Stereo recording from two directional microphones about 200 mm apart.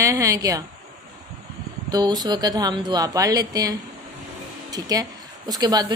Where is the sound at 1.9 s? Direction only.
20° right (ahead or behind).